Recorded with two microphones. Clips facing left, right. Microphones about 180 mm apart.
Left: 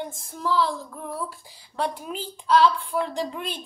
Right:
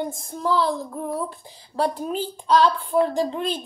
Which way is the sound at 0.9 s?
25° right (ahead or behind).